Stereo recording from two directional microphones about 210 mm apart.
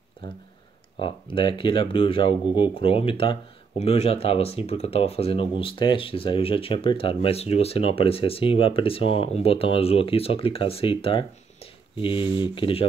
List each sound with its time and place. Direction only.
0.9 s speech: 25° left (ahead or behind)